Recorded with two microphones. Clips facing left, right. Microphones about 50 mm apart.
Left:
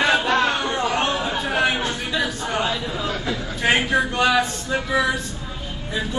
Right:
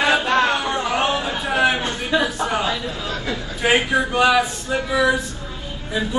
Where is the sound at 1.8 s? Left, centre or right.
Right.